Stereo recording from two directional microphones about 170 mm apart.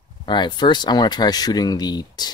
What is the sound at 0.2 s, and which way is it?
Speech, 25° left (ahead or behind).